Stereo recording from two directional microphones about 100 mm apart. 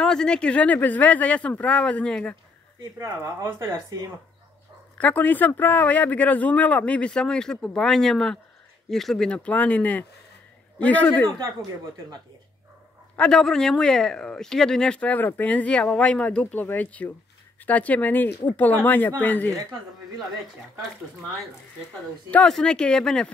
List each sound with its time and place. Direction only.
0.0 s a man's voice: 5° left (ahead or behind)
3.0 s speech: 30° right (ahead or behind)
4.9 s a man's voice: 15° left (ahead or behind)
11.3 s speech: 45° right (ahead or behind)
13.1 s a man's voice: 5° left (ahead or behind)
22.3 s a man's voice: 10° left (ahead or behind)